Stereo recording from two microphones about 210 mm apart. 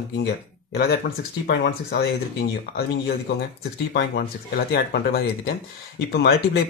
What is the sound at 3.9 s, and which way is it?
Speech, 55° left (ahead or behind).